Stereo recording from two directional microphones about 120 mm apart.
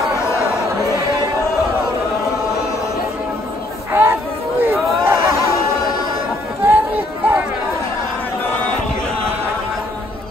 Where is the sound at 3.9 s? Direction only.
20° right (ahead or behind).